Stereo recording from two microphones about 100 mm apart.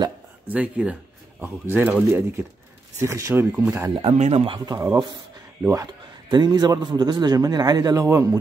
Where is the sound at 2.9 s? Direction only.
30° right (ahead or behind).